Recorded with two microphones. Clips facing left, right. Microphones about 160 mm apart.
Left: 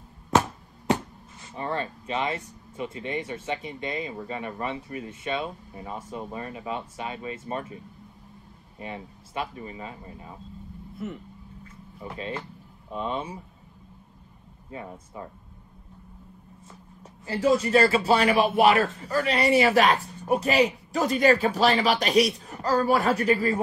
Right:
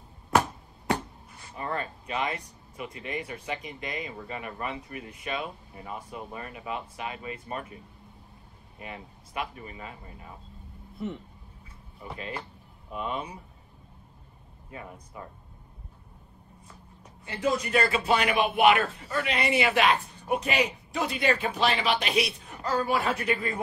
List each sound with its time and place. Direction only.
1.5 s speech: 30° left (ahead or behind)
11.0 s speech: centre (ahead or behind)
12.9 s speech: 30° left (ahead or behind)
14.7 s speech: 30° left (ahead or behind)
17.0 s a woman's voice: 30° left (ahead or behind)